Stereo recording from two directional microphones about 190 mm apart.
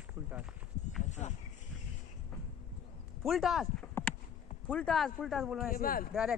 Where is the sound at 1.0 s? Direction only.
40° left (ahead or behind).